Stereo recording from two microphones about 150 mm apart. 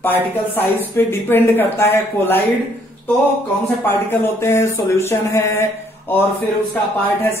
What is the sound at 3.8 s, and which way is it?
Speech, 15° left (ahead or behind).